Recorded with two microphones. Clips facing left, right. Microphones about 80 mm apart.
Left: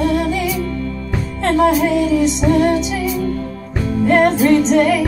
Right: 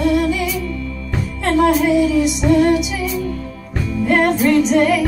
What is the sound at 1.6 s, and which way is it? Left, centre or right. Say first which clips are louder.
Music: even; centre.